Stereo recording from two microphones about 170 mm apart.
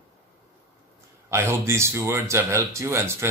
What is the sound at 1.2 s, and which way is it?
Speech, 15° right (ahead or behind).